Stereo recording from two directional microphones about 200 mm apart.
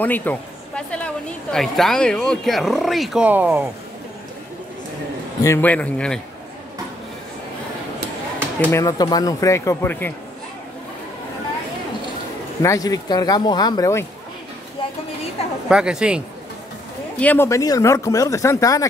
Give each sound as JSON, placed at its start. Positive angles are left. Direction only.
{"t": 0.0, "sound": "speech", "side_deg": 10}
{"t": 5.4, "sound": "speech", "side_deg": 10}
{"t": 8.7, "sound": "speech", "side_deg": 20}
{"t": 12.6, "sound": "speech", "side_deg": 15}
{"t": 15.7, "sound": "speech", "side_deg": -5}
{"t": 17.2, "sound": "speech", "side_deg": 10}